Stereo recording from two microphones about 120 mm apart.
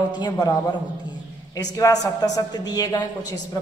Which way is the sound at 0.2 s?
35° left (ahead or behind).